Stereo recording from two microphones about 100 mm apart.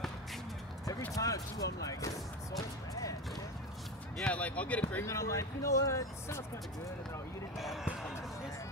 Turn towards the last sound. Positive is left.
turn(degrees=-5)  # may be behind; listen again after turning